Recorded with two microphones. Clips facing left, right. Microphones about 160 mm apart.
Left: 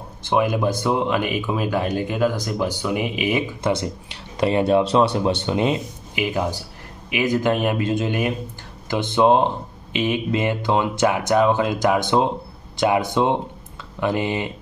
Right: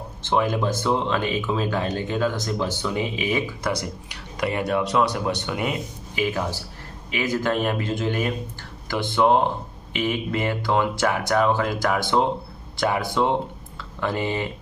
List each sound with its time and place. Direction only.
0.2 s speech: 15° left (ahead or behind)